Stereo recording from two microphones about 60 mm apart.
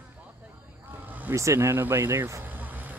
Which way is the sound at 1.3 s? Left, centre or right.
Right.